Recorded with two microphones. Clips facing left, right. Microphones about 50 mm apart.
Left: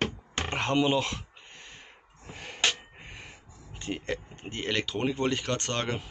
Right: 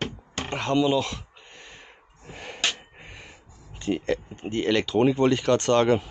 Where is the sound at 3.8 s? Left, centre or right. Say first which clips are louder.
Right 7 dB; centre.